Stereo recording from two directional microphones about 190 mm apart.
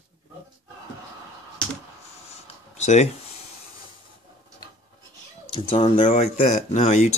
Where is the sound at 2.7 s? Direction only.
35° left (ahead or behind).